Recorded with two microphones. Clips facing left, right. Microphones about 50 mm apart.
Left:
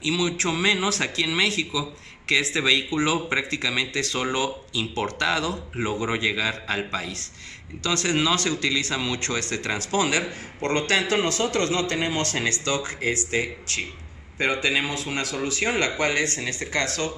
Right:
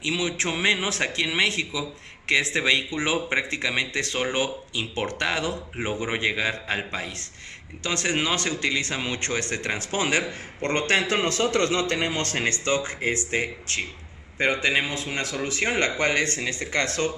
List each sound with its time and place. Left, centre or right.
0.0 s a man's voice: right